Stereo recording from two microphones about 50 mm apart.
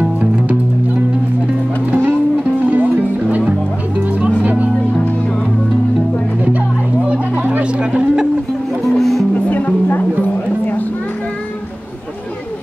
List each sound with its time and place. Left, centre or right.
0.0 s music: right
1.9 s music: right
7.1 s music: right
8.9 s music: centre
9.3 s music: left